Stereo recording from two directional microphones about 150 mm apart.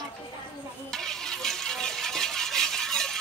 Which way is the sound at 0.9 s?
5° left (ahead or behind).